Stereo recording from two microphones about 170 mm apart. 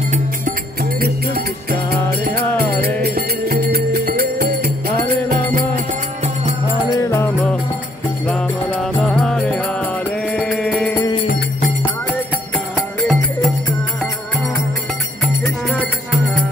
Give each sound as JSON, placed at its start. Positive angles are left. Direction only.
{"t": 1.0, "sound": "music", "side_deg": -65}
{"t": 6.9, "sound": "music", "side_deg": 15}
{"t": 11.2, "sound": "music", "side_deg": 60}
{"t": 12.7, "sound": "music", "side_deg": 0}
{"t": 15.7, "sound": "music", "side_deg": 0}